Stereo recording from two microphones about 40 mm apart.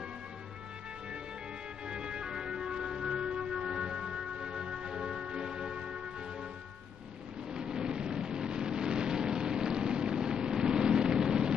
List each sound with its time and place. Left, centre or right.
1.9 s music: right
7.5 s thunder: centre